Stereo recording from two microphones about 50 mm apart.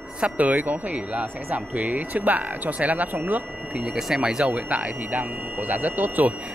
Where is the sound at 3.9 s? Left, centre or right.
Centre.